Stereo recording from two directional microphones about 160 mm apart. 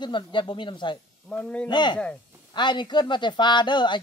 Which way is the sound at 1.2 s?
5° left (ahead or behind).